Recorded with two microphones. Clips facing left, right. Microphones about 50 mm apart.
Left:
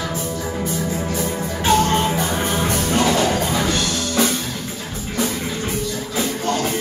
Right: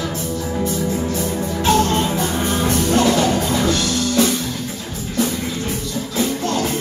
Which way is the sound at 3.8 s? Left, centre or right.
Centre.